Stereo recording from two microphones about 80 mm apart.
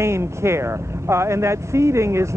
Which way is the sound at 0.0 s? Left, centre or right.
Right.